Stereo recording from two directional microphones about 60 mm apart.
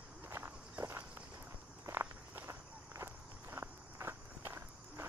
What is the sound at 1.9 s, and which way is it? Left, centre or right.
Walk, right.